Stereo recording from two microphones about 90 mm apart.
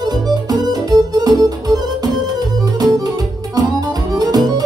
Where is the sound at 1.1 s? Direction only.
45° right (ahead or behind).